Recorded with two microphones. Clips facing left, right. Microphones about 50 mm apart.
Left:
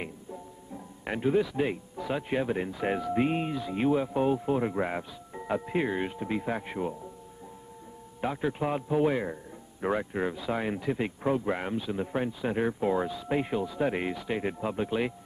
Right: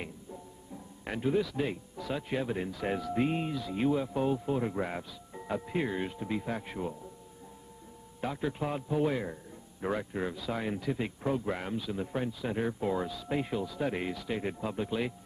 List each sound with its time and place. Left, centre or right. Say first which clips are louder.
1.0 s a man's voice: left 4 dB; centre
8.2 s a man's voice: left 4 dB; centre